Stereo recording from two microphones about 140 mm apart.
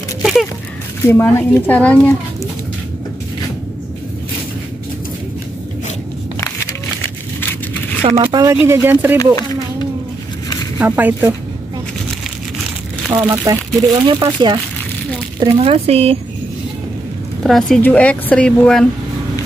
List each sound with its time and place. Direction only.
0.2 s a sound: centre (ahead or behind)
1.2 s speech: 10° left (ahead or behind)
7.3 s a sound: 15° left (ahead or behind)
8.2 s speech: 30° right (ahead or behind)
8.6 s speech: 15° right (ahead or behind)
9.2 s speech: 30° left (ahead or behind)
10.8 s speech: 10° right (ahead or behind)
13.1 s speech: 20° right (ahead or behind)
15.5 s speech: 45° right (ahead or behind)
17.4 s a woman's voice: centre (ahead or behind)